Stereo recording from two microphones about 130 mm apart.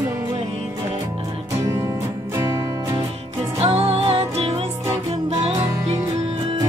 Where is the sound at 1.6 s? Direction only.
20° right (ahead or behind).